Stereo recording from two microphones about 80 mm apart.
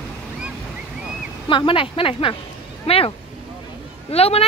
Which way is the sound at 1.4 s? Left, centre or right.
Left.